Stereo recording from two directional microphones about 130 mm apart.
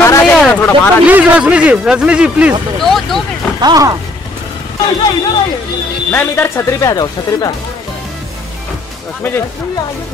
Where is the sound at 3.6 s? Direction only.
25° right (ahead or behind).